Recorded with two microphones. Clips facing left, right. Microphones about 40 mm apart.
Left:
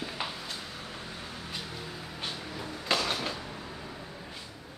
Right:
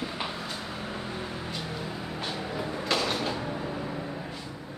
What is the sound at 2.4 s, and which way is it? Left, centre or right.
Train, centre.